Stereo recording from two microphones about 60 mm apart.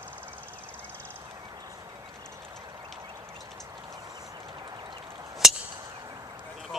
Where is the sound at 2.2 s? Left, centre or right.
Right.